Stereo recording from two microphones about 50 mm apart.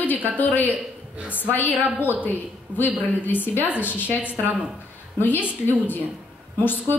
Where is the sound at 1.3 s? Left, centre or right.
Left.